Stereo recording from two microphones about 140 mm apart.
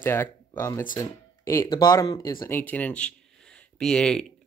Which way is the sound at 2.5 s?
15° left (ahead or behind).